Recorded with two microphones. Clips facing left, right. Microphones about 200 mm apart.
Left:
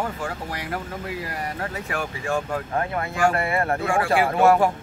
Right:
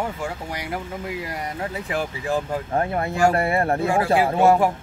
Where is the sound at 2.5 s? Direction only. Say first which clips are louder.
Right 2 dB; 30° right (ahead or behind).